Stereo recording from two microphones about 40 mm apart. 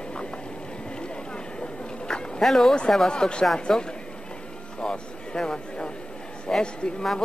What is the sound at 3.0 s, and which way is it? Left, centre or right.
Speech, left.